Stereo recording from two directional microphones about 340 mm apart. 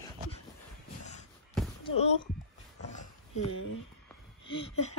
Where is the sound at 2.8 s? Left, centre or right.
Left.